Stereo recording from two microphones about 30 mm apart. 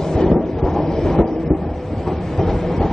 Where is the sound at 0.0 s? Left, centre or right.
Centre.